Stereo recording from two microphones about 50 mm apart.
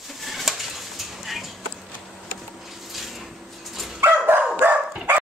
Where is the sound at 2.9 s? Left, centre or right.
Centre.